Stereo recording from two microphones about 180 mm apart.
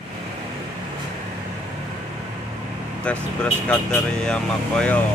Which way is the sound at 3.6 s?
5° left (ahead or behind).